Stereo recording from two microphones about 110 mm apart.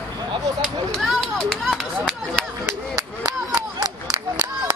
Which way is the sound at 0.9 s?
Centre (ahead or behind).